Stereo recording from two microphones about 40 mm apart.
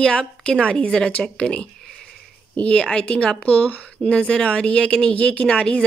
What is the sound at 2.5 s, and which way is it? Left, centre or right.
Speech, left.